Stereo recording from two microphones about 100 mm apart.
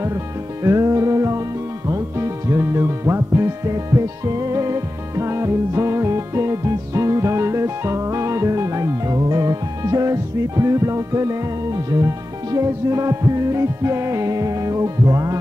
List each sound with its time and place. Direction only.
0.7 s music: 35° right (ahead or behind)